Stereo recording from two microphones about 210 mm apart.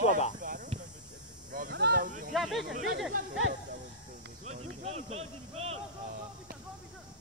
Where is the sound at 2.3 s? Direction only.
Centre (ahead or behind).